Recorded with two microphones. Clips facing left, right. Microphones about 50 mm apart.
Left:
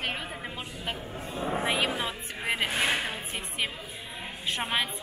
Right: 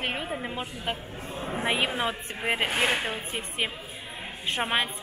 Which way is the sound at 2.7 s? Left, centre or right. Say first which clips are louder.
Right 2 dB; right.